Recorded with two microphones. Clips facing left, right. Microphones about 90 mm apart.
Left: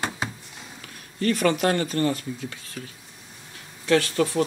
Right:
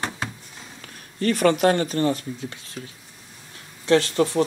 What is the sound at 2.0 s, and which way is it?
Speech, 25° right (ahead or behind).